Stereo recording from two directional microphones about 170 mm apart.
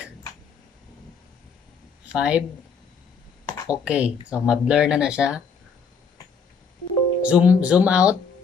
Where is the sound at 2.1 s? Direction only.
5° right (ahead or behind).